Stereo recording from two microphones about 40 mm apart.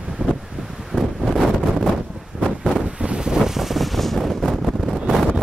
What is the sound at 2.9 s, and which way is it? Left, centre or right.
Wind noise, right.